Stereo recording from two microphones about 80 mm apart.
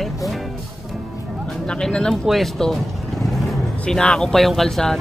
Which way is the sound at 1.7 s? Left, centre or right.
Centre.